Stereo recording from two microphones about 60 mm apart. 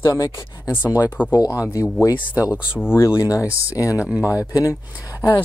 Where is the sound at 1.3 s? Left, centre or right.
Left.